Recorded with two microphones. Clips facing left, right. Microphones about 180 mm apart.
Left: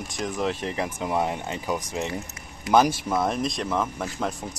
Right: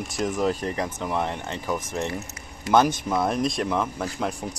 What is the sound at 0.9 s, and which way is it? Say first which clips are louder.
Speech: left 1 dB; 10° left (ahead or behind).